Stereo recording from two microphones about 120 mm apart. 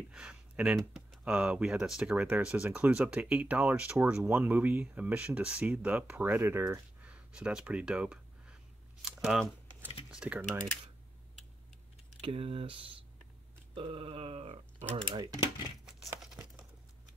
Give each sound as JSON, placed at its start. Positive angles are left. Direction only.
{"t": 0.1, "sound": "speech", "side_deg": -10}
{"t": 6.7, "sound": "a sound", "side_deg": -10}
{"t": 9.0, "sound": "speech", "side_deg": -5}
{"t": 12.2, "sound": "speech", "side_deg": -55}
{"t": 13.7, "sound": "a sound", "side_deg": -50}
{"t": 15.1, "sound": "speech", "side_deg": -35}
{"t": 15.8, "sound": "tearing", "side_deg": -5}
{"t": 16.2, "sound": "crumpling", "side_deg": -5}